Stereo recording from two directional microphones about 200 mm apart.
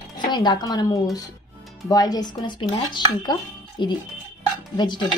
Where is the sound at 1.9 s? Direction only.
20° left (ahead or behind).